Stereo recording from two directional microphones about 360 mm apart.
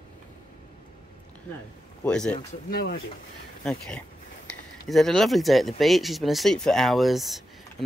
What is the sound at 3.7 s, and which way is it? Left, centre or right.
Speech, centre.